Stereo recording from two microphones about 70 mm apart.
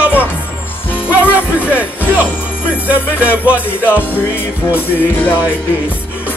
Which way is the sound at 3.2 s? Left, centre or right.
Right.